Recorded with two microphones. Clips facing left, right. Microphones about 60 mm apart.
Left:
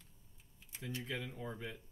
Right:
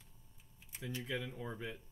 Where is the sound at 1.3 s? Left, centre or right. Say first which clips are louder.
Right 1 dB; centre.